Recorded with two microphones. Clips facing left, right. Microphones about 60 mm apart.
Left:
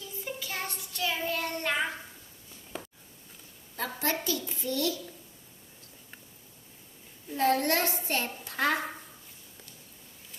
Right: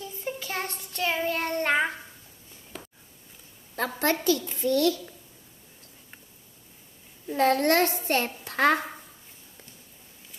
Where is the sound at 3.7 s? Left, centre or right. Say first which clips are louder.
Right 5 dB; right.